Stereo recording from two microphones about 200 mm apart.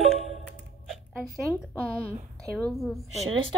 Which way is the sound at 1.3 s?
5° left (ahead or behind).